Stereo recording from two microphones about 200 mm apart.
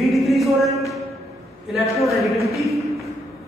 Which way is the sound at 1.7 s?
Centre (ahead or behind).